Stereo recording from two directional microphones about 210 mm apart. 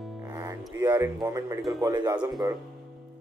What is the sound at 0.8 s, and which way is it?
Speech, 20° right (ahead or behind).